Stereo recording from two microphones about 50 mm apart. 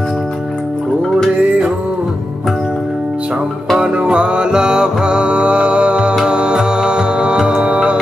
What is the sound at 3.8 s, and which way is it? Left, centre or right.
Music, right.